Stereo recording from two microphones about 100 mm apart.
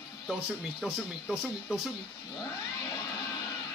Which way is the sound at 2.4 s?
35° left (ahead or behind).